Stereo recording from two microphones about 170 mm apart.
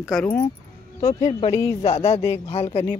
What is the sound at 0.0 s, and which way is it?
Speech, 5° left (ahead or behind).